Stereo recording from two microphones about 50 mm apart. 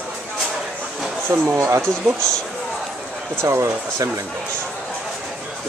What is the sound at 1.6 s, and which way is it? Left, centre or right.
Speech, right.